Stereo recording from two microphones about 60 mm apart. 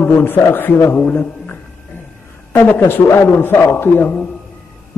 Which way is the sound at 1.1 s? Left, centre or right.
Left.